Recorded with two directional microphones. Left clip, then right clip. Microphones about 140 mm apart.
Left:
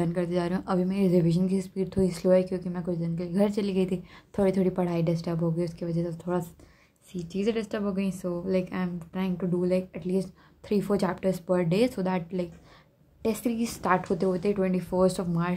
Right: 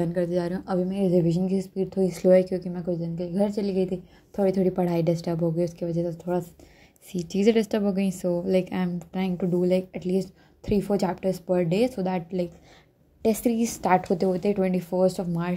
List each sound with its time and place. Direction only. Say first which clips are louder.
0.0 s a woman's voice: right 3 dB; 10° right (ahead or behind)
2.2 s a woman's voice: right 5 dB; 15° right (ahead or behind)
7.1 s a woman's voice: right 7 dB; 30° right (ahead or behind); by 12.4 s 10° right (ahead or behind)
13.2 s a woman's voice: right 5 dB; 20° right (ahead or behind)
14.9 s a woman's voice: right 1 dB; centre (ahead or behind)